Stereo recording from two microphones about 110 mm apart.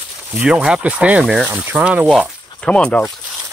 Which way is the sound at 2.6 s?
10° left (ahead or behind).